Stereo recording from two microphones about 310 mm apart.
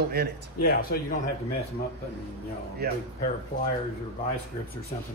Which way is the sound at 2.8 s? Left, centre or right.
Right.